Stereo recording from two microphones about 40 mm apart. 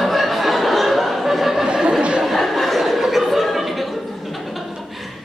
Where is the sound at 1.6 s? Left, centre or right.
Right.